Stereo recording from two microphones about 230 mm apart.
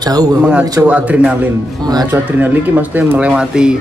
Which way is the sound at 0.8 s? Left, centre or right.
Centre.